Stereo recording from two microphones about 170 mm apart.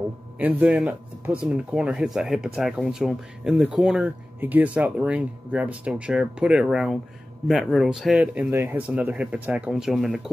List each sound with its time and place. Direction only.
0.4 s speech: 10° right (ahead or behind)